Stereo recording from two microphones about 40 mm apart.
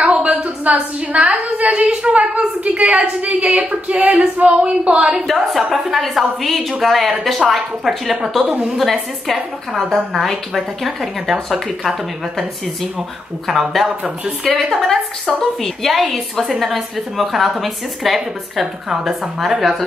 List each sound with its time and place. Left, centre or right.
0.0 s a woman's voice: right
5.2 s a woman's voice: centre
13.5 s a woman's voice: centre